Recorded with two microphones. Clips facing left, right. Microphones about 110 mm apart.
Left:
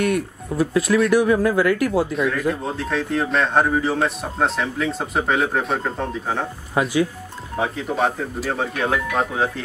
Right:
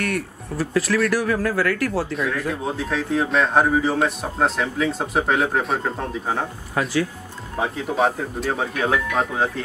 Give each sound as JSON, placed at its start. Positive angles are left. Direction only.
{"t": 0.0, "sound": "speech", "side_deg": 20}
{"t": 2.1, "sound": "a man's voice", "side_deg": 0}
{"t": 6.8, "sound": "speech", "side_deg": 15}
{"t": 7.5, "sound": "a man's voice", "side_deg": 0}